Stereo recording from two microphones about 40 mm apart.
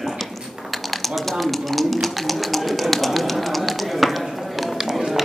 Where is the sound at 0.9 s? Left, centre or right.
Centre.